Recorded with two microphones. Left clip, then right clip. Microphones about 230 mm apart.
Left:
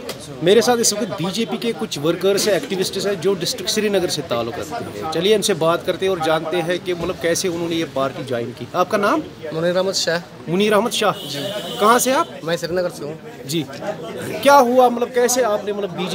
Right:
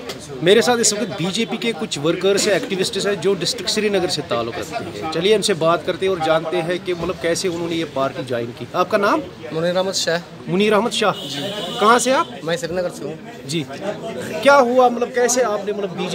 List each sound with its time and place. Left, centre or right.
0.4 s speech: centre
14.4 s a man's voice: centre